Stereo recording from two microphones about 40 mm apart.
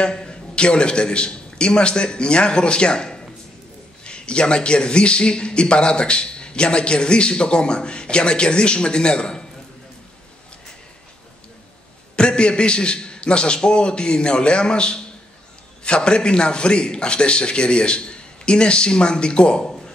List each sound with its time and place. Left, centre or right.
0.0 s a man's voice: left
12.2 s a man's voice: left